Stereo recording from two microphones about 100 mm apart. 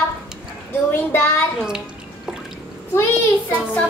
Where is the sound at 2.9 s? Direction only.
25° left (ahead or behind).